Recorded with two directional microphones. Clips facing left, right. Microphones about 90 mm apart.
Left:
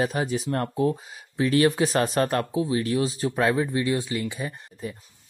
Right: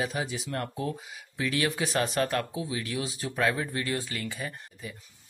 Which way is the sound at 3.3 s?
20° left (ahead or behind).